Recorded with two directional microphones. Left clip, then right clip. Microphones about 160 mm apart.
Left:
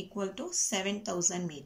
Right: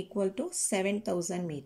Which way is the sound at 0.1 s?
30° right (ahead or behind).